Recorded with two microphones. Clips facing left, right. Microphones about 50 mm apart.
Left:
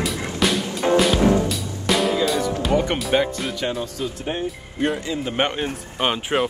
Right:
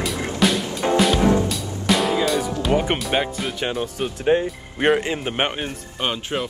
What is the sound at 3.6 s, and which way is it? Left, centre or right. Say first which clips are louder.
Speech: right 1 dB; right.